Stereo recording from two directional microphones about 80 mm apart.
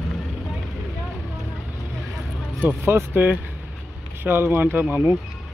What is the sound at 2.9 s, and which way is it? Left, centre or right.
Speech, right.